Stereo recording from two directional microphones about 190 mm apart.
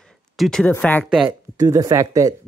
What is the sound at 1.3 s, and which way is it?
Speech, 15° right (ahead or behind).